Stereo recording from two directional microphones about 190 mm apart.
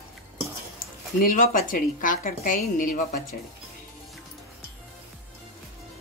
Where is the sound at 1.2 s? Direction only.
45° left (ahead or behind).